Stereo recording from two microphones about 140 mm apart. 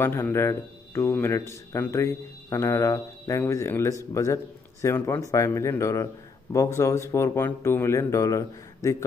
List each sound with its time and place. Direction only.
0.0 s a man's voice: 15° left (ahead or behind)